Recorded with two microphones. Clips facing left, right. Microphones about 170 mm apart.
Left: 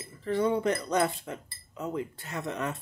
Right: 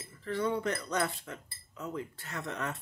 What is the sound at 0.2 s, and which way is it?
Speech, 15° left (ahead or behind).